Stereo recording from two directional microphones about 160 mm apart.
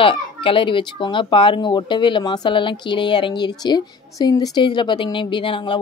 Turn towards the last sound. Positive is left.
turn(degrees=30)  # may be behind; listen again after turning